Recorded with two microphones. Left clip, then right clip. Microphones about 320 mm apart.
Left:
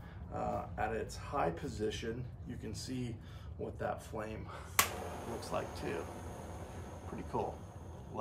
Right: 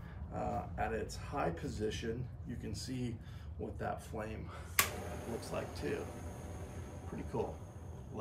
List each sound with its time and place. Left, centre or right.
0.3 s speech: centre